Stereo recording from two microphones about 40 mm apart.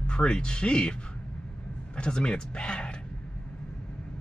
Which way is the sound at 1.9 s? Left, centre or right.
Left.